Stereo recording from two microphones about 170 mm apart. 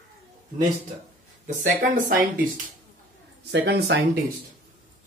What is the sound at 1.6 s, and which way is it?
Speech, 55° right (ahead or behind).